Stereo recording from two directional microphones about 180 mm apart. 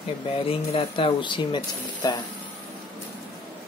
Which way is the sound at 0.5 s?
30° left (ahead or behind).